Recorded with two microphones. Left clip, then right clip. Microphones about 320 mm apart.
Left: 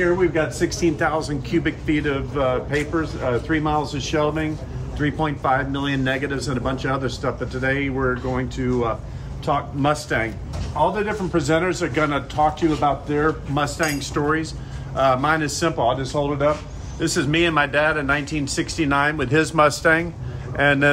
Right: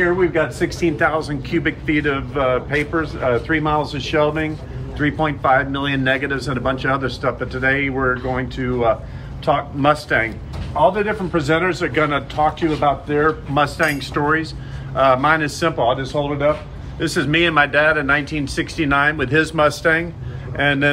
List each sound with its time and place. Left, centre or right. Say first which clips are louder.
0.3 s a man's voice: right 2 dB; centre